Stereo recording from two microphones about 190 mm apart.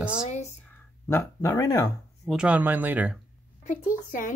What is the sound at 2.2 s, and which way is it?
Speech, 5° right (ahead or behind).